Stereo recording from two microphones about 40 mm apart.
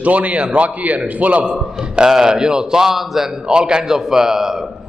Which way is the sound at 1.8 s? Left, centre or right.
Right.